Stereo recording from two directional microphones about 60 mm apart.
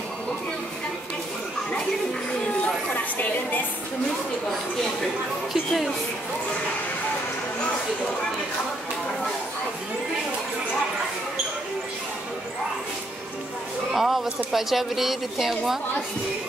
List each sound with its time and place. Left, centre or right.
2.9 s a woman's voice: left
5.5 s a woman's voice: centre
13.9 s a woman's voice: centre